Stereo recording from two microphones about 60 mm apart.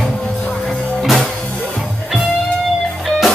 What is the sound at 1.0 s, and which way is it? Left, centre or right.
Music, centre.